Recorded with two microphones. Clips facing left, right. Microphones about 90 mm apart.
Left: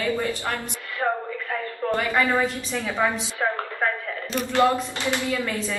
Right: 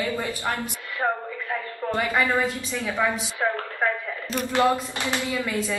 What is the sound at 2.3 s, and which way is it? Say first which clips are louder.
Speech: left 1 dB; 20° left (ahead or behind).